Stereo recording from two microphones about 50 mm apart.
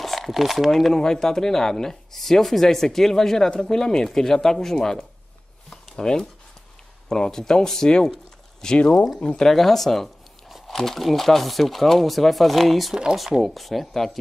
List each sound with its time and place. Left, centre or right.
0.0 s speech: centre
5.7 s a sound: centre
7.1 s speech: centre
9.5 s speech: centre